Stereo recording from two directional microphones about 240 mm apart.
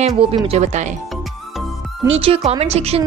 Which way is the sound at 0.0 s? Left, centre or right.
Right.